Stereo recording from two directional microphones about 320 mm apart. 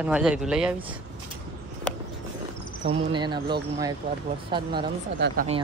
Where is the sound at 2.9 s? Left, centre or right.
Centre.